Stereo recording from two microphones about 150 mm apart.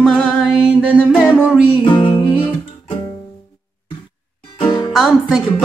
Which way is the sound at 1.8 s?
30° left (ahead or behind).